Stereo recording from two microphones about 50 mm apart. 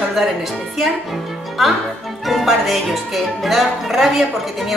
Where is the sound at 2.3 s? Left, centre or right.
Centre.